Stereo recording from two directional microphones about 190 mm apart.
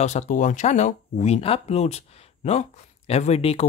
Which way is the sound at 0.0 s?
40° left (ahead or behind).